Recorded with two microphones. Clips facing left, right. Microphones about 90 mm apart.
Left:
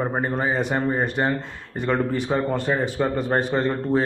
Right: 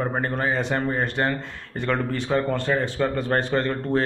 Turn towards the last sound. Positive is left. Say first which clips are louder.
# left 1 dB
turn(degrees=10)  # may be behind; listen again after turning